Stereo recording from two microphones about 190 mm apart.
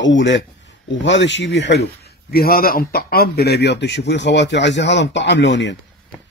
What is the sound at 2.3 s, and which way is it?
A man's voice, 50° left (ahead or behind).